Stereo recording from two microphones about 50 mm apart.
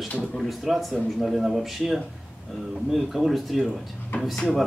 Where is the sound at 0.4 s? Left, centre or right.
Centre.